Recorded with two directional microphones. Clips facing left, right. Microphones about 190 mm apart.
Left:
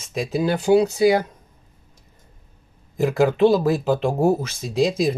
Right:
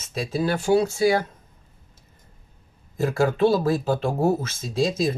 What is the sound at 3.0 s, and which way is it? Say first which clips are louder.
Speech: left 3 dB; 15° left (ahead or behind).